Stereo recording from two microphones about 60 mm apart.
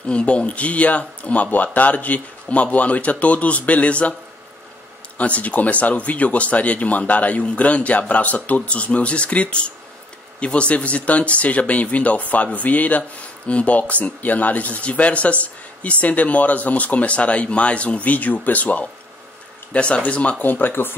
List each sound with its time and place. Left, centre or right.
0.1 s speech: centre
5.1 s speech: left